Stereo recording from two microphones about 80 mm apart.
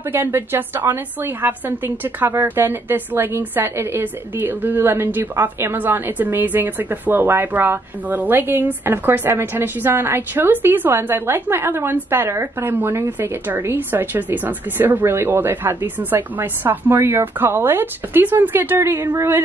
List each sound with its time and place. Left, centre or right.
0.1 s a woman's voice: right